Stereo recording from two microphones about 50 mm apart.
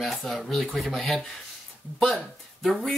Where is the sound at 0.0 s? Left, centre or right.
Centre.